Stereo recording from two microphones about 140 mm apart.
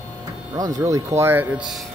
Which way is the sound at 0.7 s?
25° right (ahead or behind).